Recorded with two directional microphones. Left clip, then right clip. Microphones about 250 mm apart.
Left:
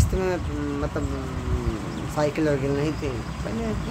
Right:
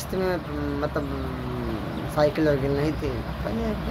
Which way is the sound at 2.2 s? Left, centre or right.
Centre.